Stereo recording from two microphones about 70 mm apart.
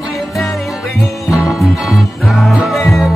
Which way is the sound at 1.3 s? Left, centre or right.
Centre.